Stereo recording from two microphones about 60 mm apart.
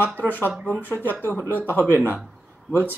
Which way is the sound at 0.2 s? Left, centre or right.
Left.